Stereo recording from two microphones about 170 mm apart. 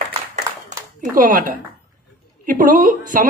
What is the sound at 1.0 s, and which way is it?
Speech, 55° right (ahead or behind).